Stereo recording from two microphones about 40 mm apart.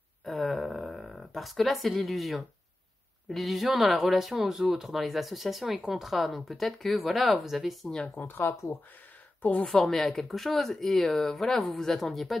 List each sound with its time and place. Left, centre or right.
0.2 s speech: centre
8.2 s speech: left
9.4 s speech: left
9.7 s speech: centre